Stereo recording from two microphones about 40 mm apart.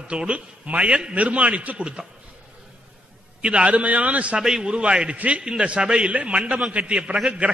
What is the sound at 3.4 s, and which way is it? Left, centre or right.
Speech, right.